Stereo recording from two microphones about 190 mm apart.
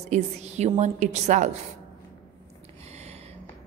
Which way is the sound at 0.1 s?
35° right (ahead or behind).